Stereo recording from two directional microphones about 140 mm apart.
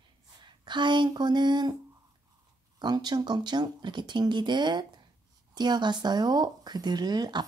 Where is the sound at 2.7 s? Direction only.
30° right (ahead or behind).